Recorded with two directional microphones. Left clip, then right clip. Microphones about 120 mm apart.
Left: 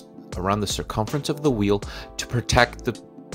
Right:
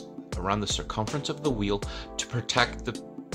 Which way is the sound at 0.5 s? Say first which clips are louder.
Left 4 dB; 45° left (ahead or behind).